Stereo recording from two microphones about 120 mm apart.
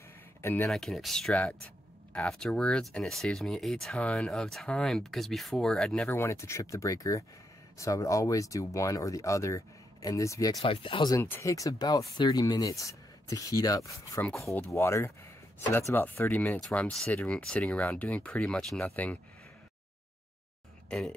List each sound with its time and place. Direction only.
0.4 s speech: 20° left (ahead or behind)
0.7 s speech: centre (ahead or behind)
6.0 s speech: 20° left (ahead or behind)
10.6 s speech: 45° left (ahead or behind)
11.2 s speech: 20° left (ahead or behind); by 18.9 s 5° left (ahead or behind)